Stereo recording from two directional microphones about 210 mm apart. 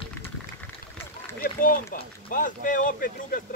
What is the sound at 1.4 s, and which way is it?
Speech, 45° left (ahead or behind).